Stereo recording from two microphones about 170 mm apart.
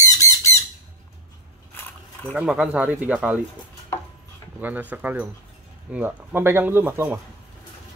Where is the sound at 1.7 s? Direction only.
10° left (ahead or behind).